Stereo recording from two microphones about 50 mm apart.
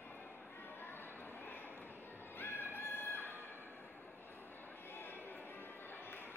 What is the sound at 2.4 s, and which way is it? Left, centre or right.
Music, left.